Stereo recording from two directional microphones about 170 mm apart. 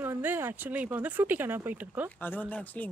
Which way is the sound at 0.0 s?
10° right (ahead or behind).